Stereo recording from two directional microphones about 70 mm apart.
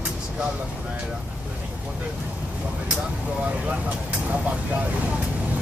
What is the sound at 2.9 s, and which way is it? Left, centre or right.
Vehicle, centre.